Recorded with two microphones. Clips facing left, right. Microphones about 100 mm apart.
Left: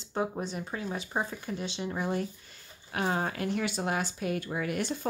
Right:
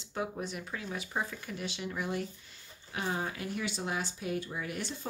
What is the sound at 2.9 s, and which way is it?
Speech, 60° left (ahead or behind).